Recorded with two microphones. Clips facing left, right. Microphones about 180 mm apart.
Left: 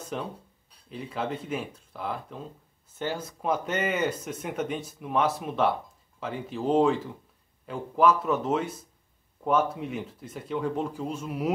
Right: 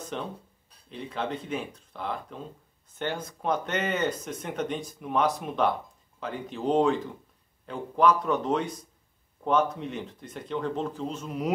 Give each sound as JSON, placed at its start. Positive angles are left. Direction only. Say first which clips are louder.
{"t": 0.0, "sound": "speech", "louder": "left 1 dB", "side_deg": 5}